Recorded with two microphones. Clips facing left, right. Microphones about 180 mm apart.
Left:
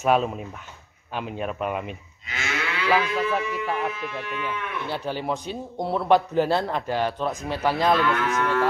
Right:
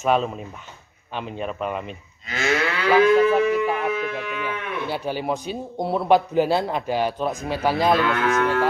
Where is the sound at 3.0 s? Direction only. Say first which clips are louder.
Right 10 dB; 50° right (ahead or behind).